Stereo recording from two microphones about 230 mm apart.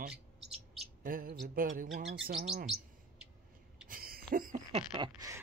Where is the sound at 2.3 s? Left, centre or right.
Right.